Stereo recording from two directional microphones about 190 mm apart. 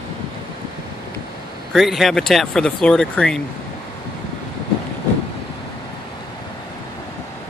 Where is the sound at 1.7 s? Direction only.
Centre (ahead or behind).